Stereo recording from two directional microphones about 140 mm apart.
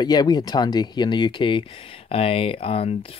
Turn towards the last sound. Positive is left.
turn(degrees=45)  # may be behind; listen again after turning